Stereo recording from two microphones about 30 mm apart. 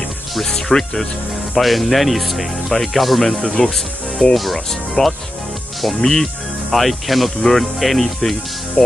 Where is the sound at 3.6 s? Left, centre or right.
Centre.